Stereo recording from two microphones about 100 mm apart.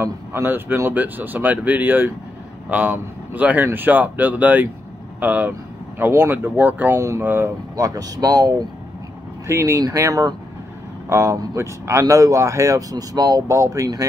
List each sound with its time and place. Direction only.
0.0 s speech: 25° right (ahead or behind)
7.7 s speech: 35° right (ahead or behind)